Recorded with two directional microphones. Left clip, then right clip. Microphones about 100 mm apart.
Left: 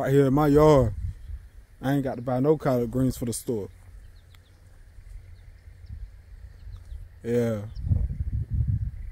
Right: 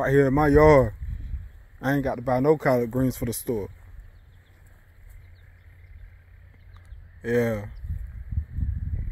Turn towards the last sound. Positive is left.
turn(degrees=5)  # may be behind; listen again after turning